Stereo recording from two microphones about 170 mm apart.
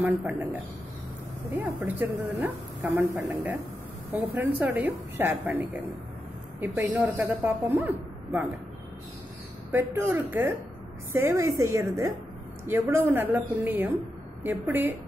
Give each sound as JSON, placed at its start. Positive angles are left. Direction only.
{"t": 0.0, "sound": "a woman's voice", "side_deg": -10}
{"t": 9.7, "sound": "a woman's voice", "side_deg": -10}